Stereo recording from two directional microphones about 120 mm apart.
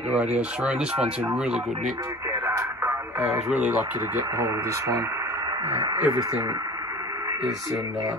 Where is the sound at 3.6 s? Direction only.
20° right (ahead or behind).